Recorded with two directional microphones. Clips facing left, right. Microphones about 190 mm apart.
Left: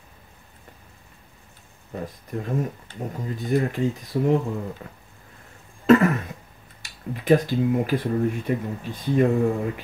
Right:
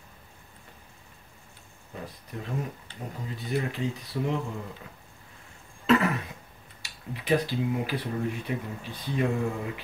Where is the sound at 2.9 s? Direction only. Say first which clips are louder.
Left 7 dB; 45° left (ahead or behind).